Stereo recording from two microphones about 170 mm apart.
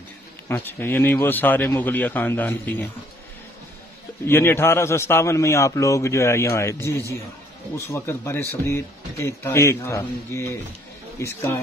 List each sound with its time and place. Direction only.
0.5 s speech: 10° left (ahead or behind)
4.3 s speech: 15° left (ahead or behind)